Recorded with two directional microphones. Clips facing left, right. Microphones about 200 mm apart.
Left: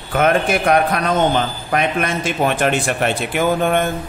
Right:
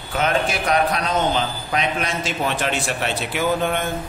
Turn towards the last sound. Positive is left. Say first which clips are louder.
# left 5 dB
turn(degrees=50)  # may be behind; listen again after turning